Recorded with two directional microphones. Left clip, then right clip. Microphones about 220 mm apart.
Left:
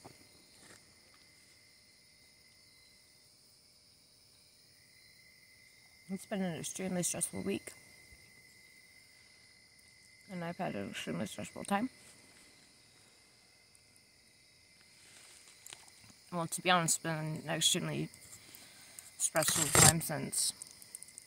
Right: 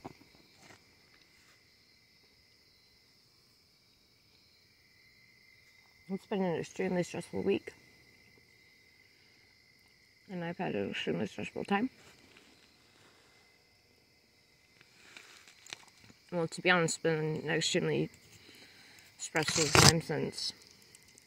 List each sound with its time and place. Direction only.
6.2 s speech: 10° left (ahead or behind)
10.2 s speech: 10° left (ahead or behind)
15.7 s walk: 40° right (ahead or behind)
16.3 s speech: 5° left (ahead or behind)